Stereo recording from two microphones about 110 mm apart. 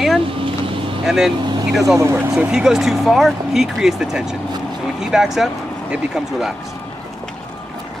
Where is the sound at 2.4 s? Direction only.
5° right (ahead or behind).